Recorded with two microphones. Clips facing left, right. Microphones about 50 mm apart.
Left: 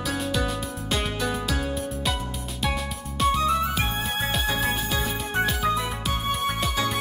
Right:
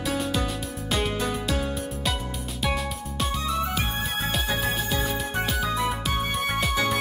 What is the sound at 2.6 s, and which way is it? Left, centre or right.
Music, centre.